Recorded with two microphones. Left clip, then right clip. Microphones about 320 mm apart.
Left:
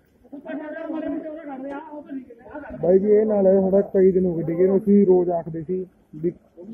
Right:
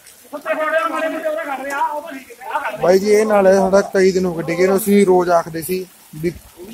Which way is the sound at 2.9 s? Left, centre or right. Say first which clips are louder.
Right 4 dB; right.